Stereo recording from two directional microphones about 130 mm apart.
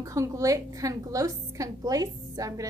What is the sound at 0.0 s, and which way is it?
A woman's voice, 25° right (ahead or behind).